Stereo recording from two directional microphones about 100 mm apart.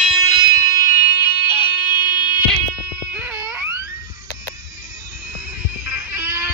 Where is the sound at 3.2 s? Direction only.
15° right (ahead or behind).